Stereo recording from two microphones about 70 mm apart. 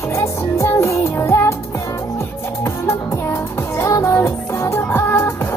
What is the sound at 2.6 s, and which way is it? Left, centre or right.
Music, left.